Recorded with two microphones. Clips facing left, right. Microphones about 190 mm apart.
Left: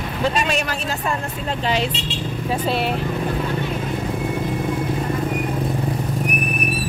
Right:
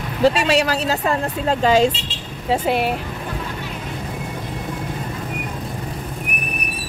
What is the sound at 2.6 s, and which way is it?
Speech, 15° right (ahead or behind).